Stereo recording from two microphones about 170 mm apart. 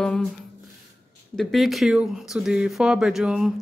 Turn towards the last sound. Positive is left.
turn(degrees=-5)  # may be behind; listen again after turning